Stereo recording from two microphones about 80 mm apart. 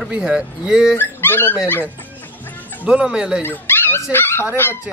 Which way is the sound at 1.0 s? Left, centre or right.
Left.